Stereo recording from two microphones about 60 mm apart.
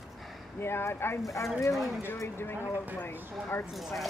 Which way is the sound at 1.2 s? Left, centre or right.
Left.